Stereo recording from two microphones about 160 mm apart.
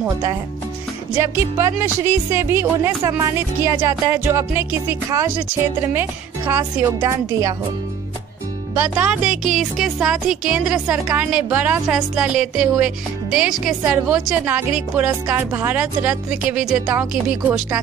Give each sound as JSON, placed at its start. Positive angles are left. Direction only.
{"t": 1.2, "sound": "speech", "side_deg": -15}
{"t": 8.7, "sound": "speech", "side_deg": -10}